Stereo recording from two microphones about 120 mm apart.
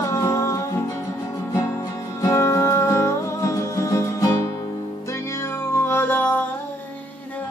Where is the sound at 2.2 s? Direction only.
25° left (ahead or behind).